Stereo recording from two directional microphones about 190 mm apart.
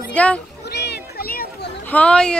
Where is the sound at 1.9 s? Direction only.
5° left (ahead or behind).